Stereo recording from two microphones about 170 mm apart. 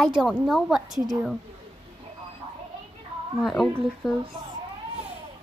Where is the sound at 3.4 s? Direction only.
Centre (ahead or behind).